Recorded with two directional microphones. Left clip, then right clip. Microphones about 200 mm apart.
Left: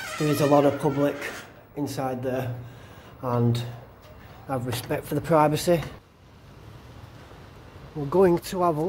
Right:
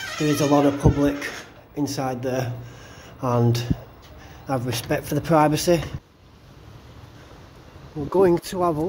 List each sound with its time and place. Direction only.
0.2 s speech: 10° left (ahead or behind)
1.8 s speech: 5° right (ahead or behind)
3.2 s speech: 40° right (ahead or behind)
4.5 s speech: 20° right (ahead or behind); by 5.9 s centre (ahead or behind)
8.1 s speech: centre (ahead or behind)